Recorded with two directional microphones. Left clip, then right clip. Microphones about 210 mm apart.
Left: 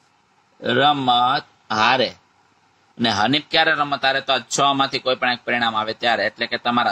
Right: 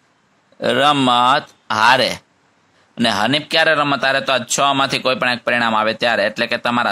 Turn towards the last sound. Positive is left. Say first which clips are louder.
# right 3 dB
turn(degrees=-40)  # may be behind; listen again after turning